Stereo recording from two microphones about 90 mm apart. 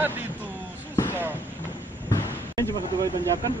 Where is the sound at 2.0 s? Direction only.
35° left (ahead or behind).